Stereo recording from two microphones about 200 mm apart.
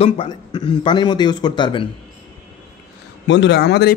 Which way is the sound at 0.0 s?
25° left (ahead or behind).